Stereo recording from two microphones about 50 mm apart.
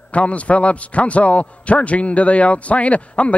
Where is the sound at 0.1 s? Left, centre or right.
Left.